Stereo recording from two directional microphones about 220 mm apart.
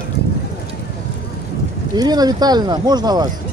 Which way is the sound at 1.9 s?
20° right (ahead or behind).